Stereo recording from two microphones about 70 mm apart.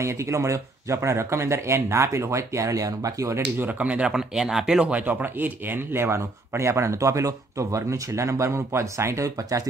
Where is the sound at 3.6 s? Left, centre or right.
Right.